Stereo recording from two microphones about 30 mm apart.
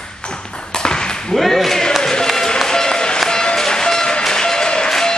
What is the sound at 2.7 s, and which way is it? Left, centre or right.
Applause, left.